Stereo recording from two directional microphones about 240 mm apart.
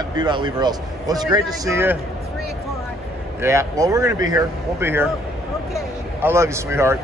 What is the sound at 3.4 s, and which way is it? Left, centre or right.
A man's voice, centre.